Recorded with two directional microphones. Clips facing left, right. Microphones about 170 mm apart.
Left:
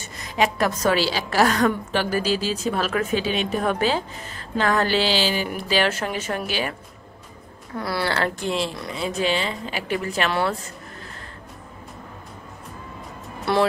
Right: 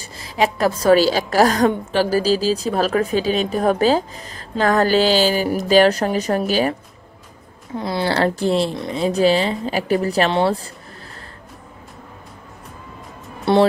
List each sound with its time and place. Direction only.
0.0 s a woman's voice: 30° right (ahead or behind)
7.7 s a woman's voice: 20° right (ahead or behind)
8.1 s speech: 35° right (ahead or behind)
13.5 s a woman's voice: 25° right (ahead or behind)